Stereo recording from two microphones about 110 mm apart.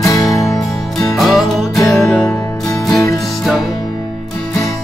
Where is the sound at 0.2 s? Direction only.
5° left (ahead or behind).